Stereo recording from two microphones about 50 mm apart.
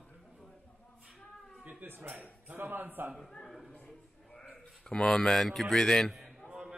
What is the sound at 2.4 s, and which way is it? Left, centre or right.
Speech, right.